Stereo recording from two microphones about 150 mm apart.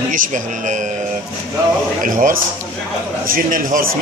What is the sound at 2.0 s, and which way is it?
A man's voice, 65° right (ahead or behind).